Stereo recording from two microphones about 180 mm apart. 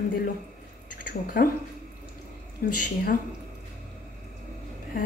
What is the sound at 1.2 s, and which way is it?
Speech, 55° left (ahead or behind).